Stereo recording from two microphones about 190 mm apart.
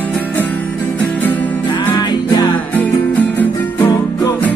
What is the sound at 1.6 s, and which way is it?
Music, 20° left (ahead or behind).